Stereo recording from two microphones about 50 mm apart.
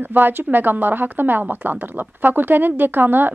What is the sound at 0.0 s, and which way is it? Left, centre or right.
Speech, right.